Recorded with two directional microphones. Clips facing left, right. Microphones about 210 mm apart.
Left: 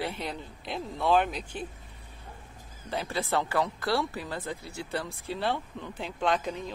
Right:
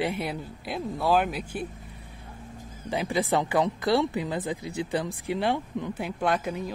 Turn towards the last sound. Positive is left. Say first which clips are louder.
# right 2 dB
turn(degrees=-5)  # may be behind; listen again after turning